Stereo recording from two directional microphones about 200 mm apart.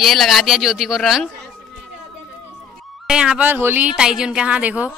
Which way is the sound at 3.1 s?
5° right (ahead or behind).